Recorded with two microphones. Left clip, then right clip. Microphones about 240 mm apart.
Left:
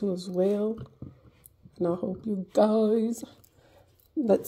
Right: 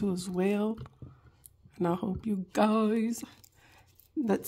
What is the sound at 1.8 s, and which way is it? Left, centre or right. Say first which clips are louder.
Speech: left 3 dB; right.